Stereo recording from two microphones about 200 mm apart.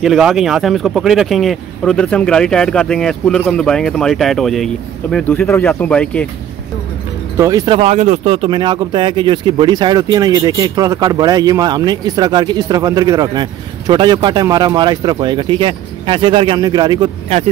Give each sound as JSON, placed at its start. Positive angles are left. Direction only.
{"t": 0.0, "sound": "a man's voice", "side_deg": 0}
{"t": 7.3, "sound": "speech", "side_deg": -15}